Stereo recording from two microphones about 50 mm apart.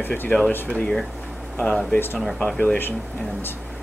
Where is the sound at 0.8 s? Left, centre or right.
Centre.